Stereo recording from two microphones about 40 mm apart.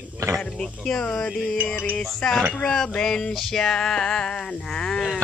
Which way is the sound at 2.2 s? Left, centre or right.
Centre.